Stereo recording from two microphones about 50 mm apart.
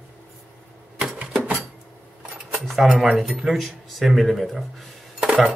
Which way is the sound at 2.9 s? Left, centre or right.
Centre.